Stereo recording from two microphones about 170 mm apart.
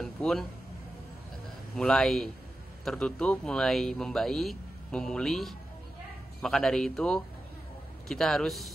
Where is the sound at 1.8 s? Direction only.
Centre (ahead or behind).